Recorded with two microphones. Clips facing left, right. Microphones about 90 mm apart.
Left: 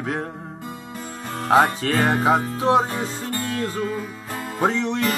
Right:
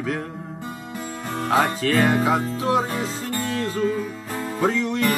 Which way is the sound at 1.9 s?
45° left (ahead or behind).